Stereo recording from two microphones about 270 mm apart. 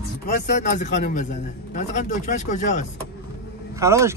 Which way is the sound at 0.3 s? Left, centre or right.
Left.